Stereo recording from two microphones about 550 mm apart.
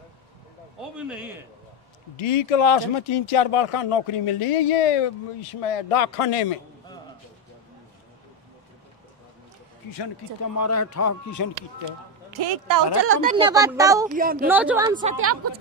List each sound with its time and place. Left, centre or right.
0.7 s a man's voice: centre
2.1 s speech: left
10.4 s speech: left
12.3 s a woman's voice: right
13.0 s speech: centre
14.5 s a woman's voice: centre
15.1 s a woman's voice: right